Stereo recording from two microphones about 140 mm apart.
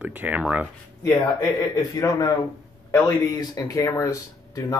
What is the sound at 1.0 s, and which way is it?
Speech, 25° left (ahead or behind).